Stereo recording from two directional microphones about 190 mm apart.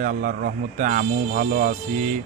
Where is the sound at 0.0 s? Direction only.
45° right (ahead or behind).